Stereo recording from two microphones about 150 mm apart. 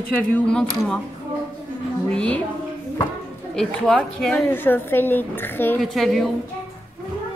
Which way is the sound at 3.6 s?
5° left (ahead or behind).